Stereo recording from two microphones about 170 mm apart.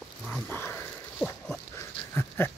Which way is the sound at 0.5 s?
10° left (ahead or behind).